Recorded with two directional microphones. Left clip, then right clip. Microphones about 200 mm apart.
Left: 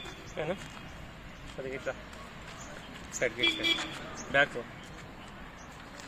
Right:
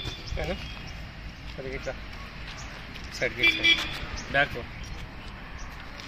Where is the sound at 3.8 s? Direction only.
5° right (ahead or behind).